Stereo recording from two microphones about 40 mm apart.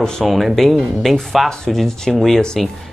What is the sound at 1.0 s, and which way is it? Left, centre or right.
Speech, centre.